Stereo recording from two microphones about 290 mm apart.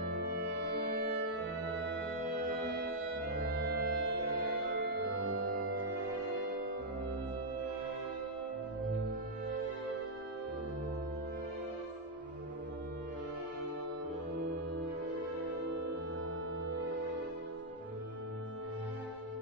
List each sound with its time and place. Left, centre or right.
0.1 s music: right
2.4 s music: right
5.3 s music: right